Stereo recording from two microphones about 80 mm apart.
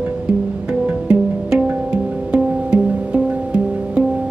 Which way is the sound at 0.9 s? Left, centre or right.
Centre.